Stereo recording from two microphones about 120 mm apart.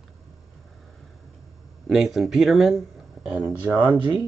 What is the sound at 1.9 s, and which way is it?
Speech, 5° right (ahead or behind).